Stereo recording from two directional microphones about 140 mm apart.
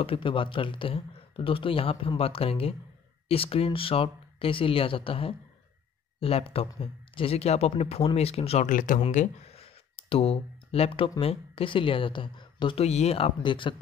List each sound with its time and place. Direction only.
0.0 s speech: 40° left (ahead or behind)
8.6 s speech: 70° left (ahead or behind)
9.1 s speech: 55° left (ahead or behind); by 13.7 s 35° left (ahead or behind)